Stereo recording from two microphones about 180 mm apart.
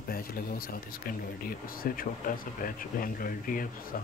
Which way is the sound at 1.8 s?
50° left (ahead or behind).